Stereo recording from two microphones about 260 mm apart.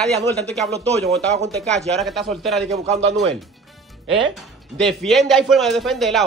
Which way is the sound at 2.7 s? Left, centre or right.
Right.